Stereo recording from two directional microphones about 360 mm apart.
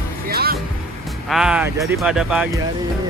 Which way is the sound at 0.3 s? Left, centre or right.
Right.